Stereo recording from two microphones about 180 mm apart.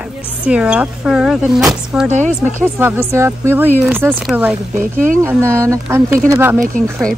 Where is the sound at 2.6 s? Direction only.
10° right (ahead or behind).